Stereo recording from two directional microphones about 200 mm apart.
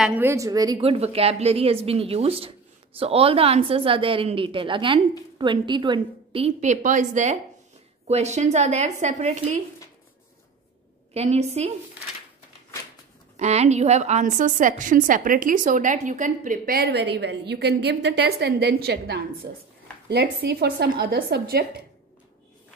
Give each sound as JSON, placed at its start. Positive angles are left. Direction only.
{"t": 0.0, "sound": "a woman's voice", "side_deg": -10}
{"t": 0.7, "sound": "a woman's voice", "side_deg": -30}
{"t": 11.1, "sound": "a woman's voice", "side_deg": -35}
{"t": 13.4, "sound": "a woman's voice", "side_deg": -35}